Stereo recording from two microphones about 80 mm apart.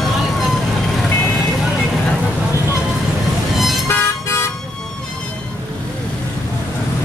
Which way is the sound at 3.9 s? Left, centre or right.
Left.